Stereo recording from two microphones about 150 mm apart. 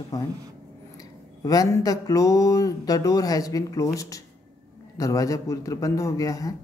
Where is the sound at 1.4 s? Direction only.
25° left (ahead or behind).